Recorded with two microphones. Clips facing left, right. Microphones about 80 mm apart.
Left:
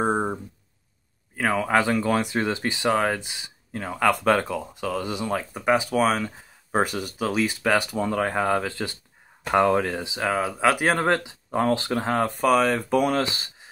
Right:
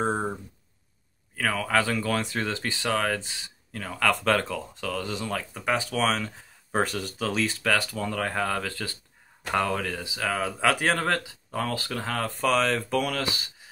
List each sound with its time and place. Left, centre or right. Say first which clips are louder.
0.0 s a sound: left 3 dB; centre
1.3 s speech: left 3 dB; left
10.5 s speech: left 2 dB; centre; by 13.5 s left